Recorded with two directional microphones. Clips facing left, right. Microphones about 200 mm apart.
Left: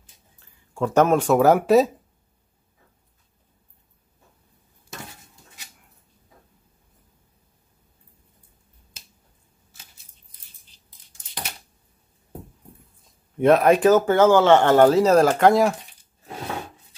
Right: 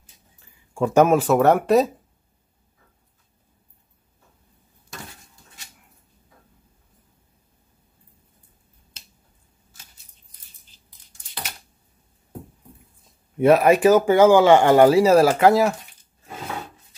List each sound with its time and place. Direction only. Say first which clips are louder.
0.7 s speech: right 2 dB; 10° right (ahead or behind)
13.0 s speech: right 1 dB; 5° right (ahead or behind)